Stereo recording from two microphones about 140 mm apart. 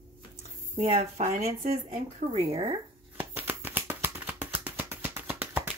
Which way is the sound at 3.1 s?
15° right (ahead or behind).